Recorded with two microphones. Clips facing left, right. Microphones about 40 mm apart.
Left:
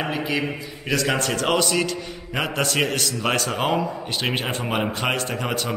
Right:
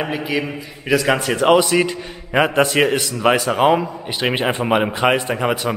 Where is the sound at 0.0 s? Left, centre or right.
Centre.